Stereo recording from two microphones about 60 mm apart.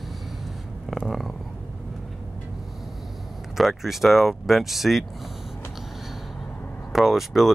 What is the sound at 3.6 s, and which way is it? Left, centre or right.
Speech, centre.